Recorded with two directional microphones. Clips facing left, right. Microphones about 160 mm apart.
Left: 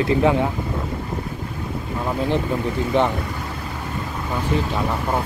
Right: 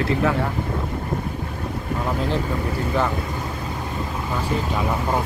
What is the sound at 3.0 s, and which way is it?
Speech, 25° left (ahead or behind).